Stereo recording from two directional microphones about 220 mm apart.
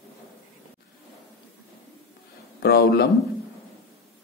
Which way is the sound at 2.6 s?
45° left (ahead or behind).